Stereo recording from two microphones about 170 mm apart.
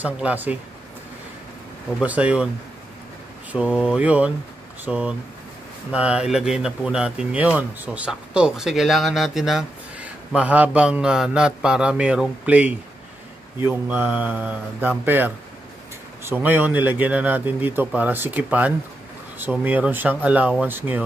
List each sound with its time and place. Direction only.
0.0 s speech: 10° right (ahead or behind)
2.0 s speech: 10° right (ahead or behind)
3.5 s speech: 5° right (ahead or behind)